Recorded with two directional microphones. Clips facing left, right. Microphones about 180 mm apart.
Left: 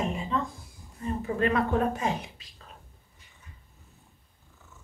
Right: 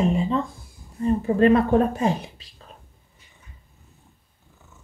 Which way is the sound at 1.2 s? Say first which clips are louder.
Right 8 dB; 35° right (ahead or behind).